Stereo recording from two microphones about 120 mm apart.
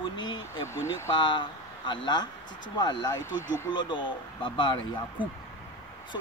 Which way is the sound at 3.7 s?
40° left (ahead or behind).